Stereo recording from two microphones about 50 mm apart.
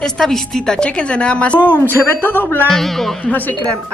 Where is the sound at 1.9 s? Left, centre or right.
Left.